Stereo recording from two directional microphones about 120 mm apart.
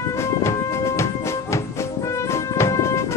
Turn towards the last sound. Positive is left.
turn(degrees=25)  # may be behind; listen again after turning